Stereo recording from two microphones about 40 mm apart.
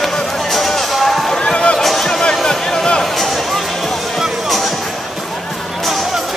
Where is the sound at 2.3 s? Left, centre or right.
Centre.